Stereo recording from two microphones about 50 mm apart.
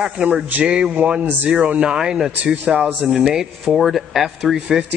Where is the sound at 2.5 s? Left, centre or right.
Right.